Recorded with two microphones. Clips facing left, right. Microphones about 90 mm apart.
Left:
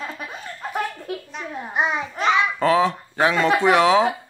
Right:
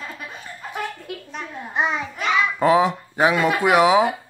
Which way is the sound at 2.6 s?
15° right (ahead or behind).